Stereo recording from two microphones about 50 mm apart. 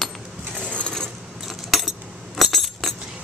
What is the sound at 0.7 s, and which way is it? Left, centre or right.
Pulleys, left.